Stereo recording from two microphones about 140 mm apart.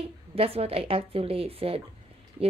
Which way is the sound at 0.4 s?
45° right (ahead or behind).